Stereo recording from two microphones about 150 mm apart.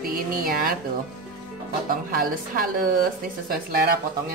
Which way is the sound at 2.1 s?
75° right (ahead or behind).